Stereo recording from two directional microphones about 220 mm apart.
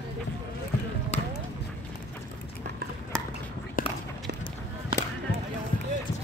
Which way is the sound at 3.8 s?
40° left (ahead or behind).